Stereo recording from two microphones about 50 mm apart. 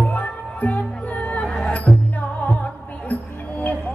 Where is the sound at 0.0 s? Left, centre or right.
Left.